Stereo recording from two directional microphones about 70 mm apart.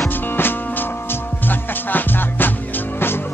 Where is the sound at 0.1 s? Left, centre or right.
Left.